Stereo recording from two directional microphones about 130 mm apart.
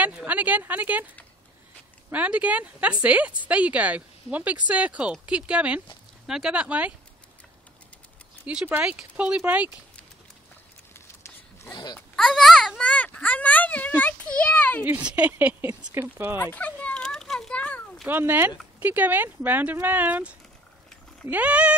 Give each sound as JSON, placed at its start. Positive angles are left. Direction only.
{"t": 0.0, "sound": "speech", "side_deg": -10}
{"t": 8.5, "sound": "speech", "side_deg": -10}
{"t": 10.9, "sound": "a sound", "side_deg": 20}
{"t": 12.2, "sound": "speech", "side_deg": 0}
{"t": 14.9, "sound": "speech", "side_deg": -10}
{"t": 16.5, "sound": "a sound", "side_deg": 10}
{"t": 18.0, "sound": "speech", "side_deg": -15}